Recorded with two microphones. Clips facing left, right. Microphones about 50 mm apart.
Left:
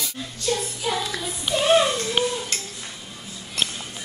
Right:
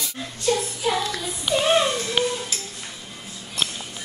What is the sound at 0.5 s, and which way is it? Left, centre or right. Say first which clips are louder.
Child singing: right 3 dB; centre.